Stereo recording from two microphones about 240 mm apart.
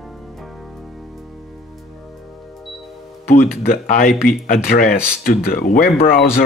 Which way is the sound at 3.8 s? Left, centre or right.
Left.